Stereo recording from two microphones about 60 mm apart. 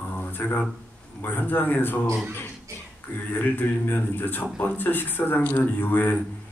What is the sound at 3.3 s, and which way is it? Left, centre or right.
A man's voice, left.